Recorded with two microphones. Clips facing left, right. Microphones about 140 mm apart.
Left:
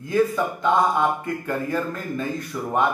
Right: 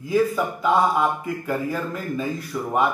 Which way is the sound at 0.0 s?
5° right (ahead or behind).